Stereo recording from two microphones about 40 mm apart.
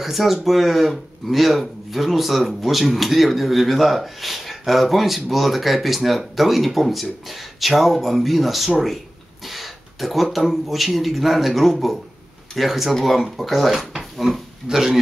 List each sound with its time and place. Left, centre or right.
0.0 s speech: centre
14.7 s speech: right